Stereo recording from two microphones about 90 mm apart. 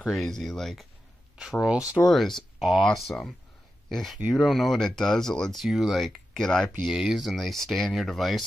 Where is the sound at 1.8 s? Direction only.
40° left (ahead or behind).